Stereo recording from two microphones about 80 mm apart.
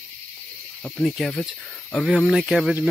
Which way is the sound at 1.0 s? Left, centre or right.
Left.